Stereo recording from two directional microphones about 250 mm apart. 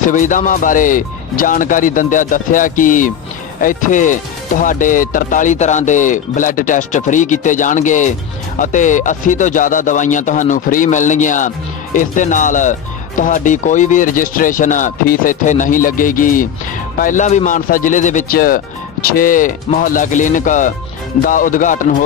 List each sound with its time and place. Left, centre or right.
0.1 s speech: left